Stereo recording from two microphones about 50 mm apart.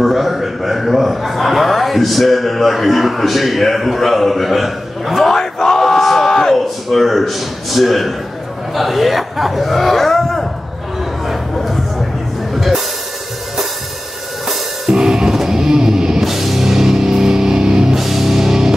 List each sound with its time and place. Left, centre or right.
0.0 s a man's voice: centre
11.2 s a sound: centre
12.5 s music: centre
14.5 s music: centre